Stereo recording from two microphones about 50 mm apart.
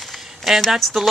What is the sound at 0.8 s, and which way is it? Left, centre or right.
Speech, centre.